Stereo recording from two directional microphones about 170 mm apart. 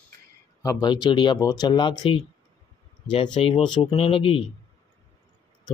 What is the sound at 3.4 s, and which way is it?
Speech, 30° left (ahead or behind).